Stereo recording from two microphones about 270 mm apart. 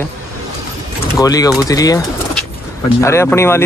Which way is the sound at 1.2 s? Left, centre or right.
Centre.